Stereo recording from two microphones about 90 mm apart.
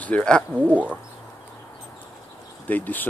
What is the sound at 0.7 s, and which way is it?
Speech, 15° right (ahead or behind).